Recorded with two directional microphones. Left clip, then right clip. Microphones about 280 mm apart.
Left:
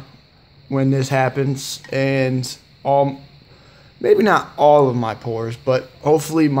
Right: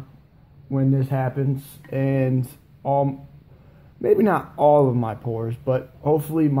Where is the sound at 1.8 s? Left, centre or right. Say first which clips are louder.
Left 5 dB; centre.